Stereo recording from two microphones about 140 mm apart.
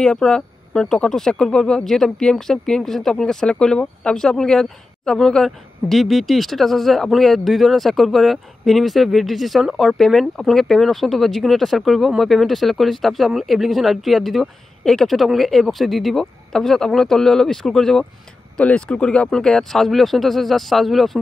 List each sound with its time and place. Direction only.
0.0 s speech: 5° left (ahead or behind)